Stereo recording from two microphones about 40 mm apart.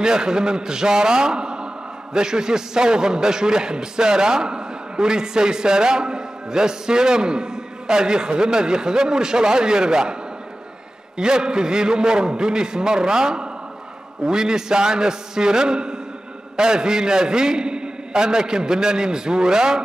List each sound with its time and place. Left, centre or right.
0.0 s a man's voice: centre
11.1 s a man's voice: centre